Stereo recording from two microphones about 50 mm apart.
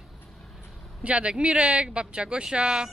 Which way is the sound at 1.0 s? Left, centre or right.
Right.